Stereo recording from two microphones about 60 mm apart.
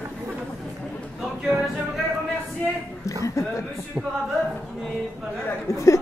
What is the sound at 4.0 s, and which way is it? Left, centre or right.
Music, centre.